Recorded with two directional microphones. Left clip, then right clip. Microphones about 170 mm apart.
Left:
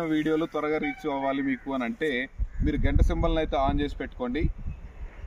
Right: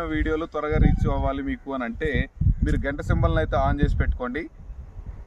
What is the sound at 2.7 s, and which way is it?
Speech, 5° left (ahead or behind).